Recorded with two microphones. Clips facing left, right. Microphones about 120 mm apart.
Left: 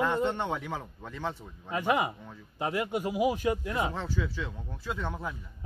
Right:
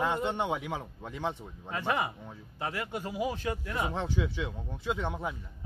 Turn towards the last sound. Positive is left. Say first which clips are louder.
# right 2 dB
turn(degrees=-20)  # may be behind; listen again after turning